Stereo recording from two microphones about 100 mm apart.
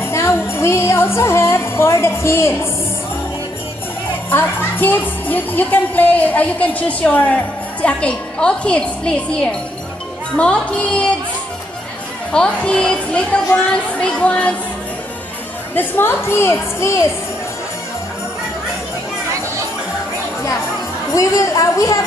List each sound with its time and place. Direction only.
0.0 s music: 25° left (ahead or behind)
4.3 s speech: 20° left (ahead or behind)
12.3 s speech: 10° left (ahead or behind)
15.7 s a woman's voice: 20° left (ahead or behind)
21.1 s a woman's voice: 35° left (ahead or behind)